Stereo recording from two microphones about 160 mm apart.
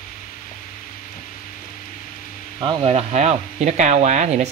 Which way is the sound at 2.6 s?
35° right (ahead or behind).